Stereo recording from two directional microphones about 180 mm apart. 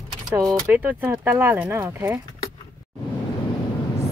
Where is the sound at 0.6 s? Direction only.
10° right (ahead or behind).